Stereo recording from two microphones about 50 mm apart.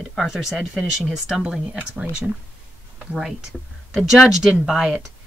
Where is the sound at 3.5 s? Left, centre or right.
Centre.